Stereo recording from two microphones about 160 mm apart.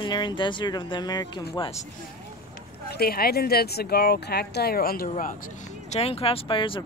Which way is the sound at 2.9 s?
75° left (ahead or behind).